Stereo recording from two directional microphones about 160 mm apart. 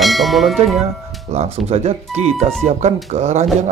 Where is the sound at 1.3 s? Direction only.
40° right (ahead or behind).